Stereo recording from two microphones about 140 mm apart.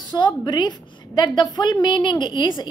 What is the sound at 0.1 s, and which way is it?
A woman's voice, 30° left (ahead or behind).